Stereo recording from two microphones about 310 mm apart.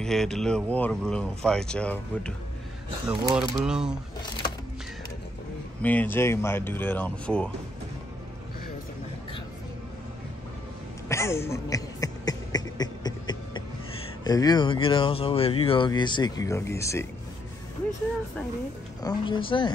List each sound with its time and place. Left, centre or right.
0.0 s speech: centre
5.8 s speech: centre
11.1 s beatboxing: centre
14.2 s speech: centre
19.0 s speech: centre